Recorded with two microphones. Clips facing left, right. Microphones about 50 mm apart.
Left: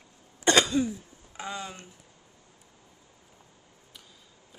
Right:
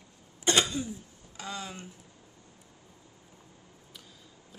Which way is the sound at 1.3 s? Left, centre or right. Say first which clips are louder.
Left 3 dB; centre.